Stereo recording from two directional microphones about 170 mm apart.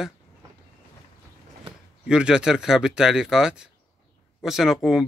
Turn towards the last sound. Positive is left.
turn(degrees=0)  # may be behind; listen again after turning